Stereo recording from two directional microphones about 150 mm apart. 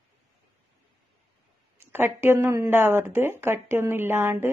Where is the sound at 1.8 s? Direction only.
15° right (ahead or behind).